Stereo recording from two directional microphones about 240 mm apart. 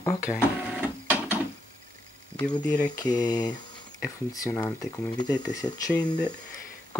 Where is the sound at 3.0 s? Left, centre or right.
Centre.